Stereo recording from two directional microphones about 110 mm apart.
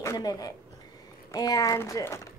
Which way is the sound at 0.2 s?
35° left (ahead or behind).